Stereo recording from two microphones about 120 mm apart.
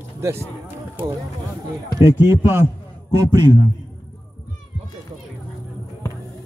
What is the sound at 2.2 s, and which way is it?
Speech, 20° right (ahead or behind).